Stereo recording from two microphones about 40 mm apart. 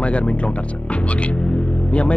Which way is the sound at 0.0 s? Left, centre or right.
Left.